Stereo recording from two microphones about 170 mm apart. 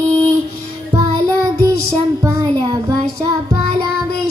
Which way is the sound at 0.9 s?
15° right (ahead or behind).